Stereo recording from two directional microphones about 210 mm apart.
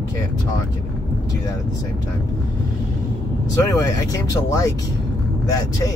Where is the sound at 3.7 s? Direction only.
15° left (ahead or behind).